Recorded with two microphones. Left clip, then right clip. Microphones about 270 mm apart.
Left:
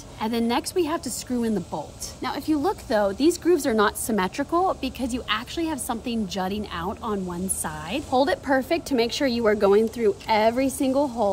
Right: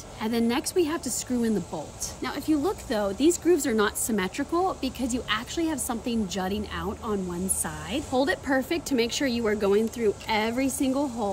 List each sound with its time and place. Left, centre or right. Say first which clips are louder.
0.2 s a woman's voice: left 2 dB; centre